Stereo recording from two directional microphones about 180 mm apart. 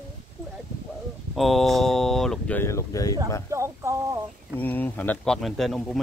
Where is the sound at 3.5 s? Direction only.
15° right (ahead or behind).